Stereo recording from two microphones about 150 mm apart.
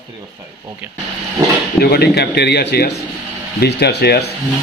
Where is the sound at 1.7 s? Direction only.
90° left.